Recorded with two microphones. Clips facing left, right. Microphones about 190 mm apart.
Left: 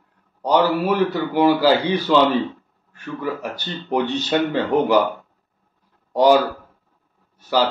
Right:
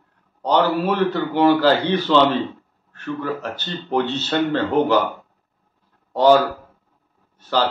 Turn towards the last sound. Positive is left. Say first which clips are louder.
# left 1 dB
turn(degrees=10)  # may be behind; listen again after turning